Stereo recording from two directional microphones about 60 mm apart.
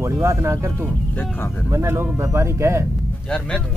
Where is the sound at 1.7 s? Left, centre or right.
Right.